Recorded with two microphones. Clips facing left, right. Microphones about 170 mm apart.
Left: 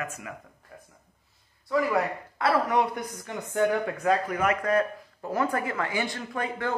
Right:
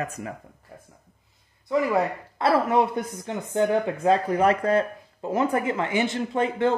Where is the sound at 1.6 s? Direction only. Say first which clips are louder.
Right 3 dB; 20° right (ahead or behind).